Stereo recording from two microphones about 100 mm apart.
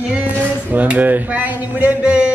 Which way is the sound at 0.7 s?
15° right (ahead or behind).